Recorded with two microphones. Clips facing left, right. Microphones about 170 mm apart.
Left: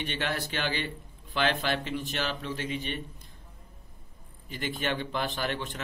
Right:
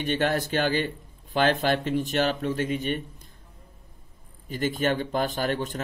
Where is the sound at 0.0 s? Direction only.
45° right (ahead or behind).